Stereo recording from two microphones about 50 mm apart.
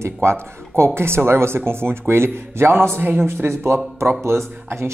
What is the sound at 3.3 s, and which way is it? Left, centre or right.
Speech, right.